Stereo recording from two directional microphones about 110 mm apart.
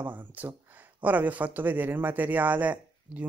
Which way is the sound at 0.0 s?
15° right (ahead or behind).